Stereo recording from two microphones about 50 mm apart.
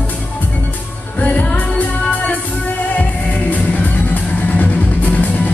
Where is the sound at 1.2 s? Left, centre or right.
Left.